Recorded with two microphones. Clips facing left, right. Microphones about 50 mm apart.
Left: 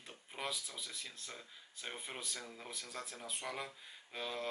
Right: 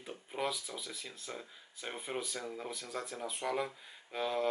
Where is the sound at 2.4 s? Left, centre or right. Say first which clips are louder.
Right 8 dB; centre.